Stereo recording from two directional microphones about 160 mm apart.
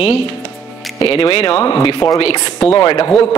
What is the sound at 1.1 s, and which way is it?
A man's voice, 30° left (ahead or behind).